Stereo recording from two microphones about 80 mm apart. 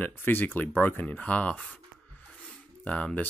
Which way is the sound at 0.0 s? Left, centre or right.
Left.